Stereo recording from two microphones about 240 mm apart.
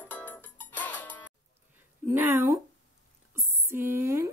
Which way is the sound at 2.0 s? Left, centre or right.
Centre.